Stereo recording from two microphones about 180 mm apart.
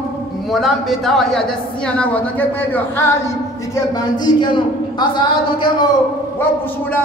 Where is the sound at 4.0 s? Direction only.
25° left (ahead or behind).